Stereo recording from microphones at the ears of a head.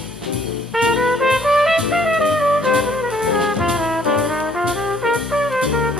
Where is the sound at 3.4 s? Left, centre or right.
Centre.